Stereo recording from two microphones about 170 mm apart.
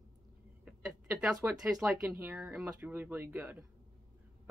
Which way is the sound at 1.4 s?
5° right (ahead or behind).